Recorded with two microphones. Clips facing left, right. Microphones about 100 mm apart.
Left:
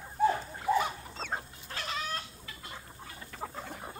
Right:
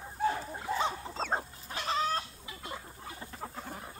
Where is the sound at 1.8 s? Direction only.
35° right (ahead or behind).